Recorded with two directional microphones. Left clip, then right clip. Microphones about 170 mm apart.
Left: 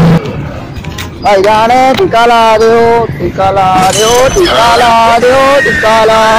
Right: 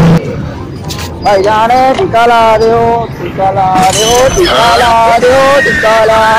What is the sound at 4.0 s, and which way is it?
Speech, 40° left (ahead or behind).